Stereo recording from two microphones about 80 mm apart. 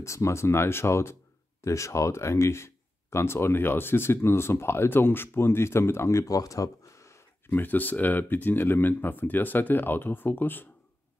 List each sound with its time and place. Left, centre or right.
0.0 s speech: left
7.4 s speech: left